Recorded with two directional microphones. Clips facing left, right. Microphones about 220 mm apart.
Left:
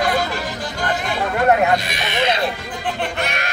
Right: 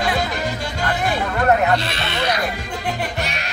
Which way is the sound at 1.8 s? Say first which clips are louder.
Left 2 dB; 15° left (ahead or behind).